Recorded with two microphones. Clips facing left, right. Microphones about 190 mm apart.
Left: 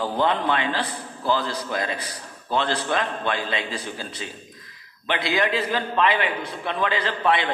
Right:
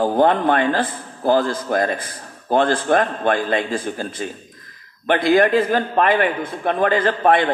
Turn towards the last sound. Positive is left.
turn(degrees=-50)  # may be behind; listen again after turning